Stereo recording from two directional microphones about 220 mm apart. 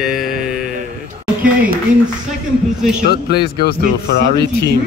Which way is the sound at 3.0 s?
45° left (ahead or behind).